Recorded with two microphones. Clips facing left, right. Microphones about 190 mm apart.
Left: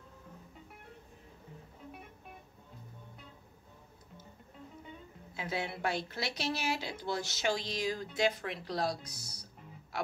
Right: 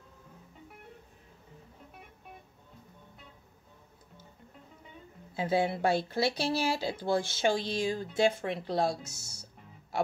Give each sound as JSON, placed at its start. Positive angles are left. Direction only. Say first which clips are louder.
{"t": 5.3, "sound": "speech", "louder": "right 9 dB", "side_deg": -30}